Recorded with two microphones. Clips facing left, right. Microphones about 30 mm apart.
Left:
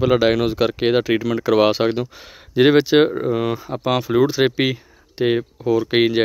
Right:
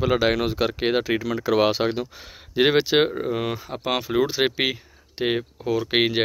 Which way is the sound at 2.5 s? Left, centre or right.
Centre.